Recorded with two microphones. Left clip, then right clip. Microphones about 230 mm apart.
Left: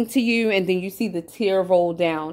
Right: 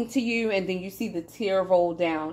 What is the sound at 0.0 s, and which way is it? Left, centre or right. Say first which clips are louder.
A woman's voice: left 6 dB; left.